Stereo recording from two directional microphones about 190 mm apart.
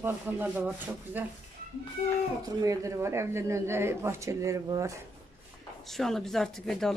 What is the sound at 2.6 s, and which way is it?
Speech, 15° right (ahead or behind).